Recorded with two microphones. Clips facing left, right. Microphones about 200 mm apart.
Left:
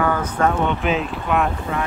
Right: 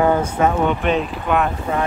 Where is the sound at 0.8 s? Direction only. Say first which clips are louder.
Right 2 dB; centre (ahead or behind).